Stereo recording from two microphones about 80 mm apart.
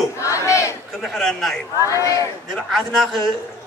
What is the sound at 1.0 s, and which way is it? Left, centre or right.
Speech, centre.